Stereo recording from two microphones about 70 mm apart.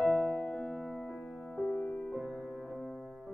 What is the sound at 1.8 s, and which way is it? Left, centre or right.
Music, left.